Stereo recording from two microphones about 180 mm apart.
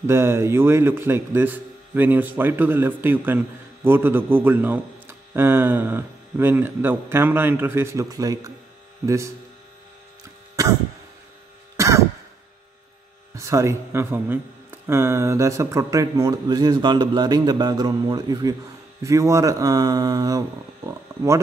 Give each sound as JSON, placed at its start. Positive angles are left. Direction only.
{"t": 0.0, "sound": "a man's voice", "side_deg": -15}
{"t": 10.5, "sound": "a sound", "side_deg": -20}
{"t": 11.7, "sound": "throat clearing", "side_deg": -15}
{"t": 13.4, "sound": "speech", "side_deg": -15}